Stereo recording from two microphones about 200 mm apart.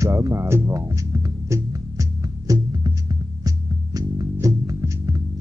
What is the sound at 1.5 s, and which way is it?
Music, 15° right (ahead or behind).